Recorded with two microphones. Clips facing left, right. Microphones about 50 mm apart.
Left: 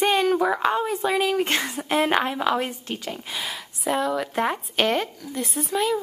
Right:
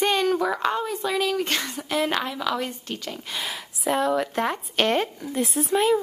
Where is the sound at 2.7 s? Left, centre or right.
Centre.